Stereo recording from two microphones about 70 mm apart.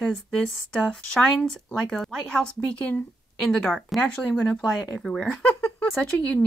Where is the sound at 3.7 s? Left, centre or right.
Centre.